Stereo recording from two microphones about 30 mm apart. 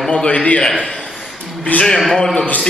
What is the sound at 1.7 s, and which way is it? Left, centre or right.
Speech, left.